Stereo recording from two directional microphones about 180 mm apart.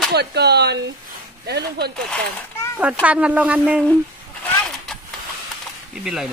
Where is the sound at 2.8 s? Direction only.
5° right (ahead or behind).